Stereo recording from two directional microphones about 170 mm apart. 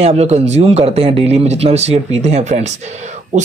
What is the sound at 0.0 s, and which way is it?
Speech, 40° right (ahead or behind).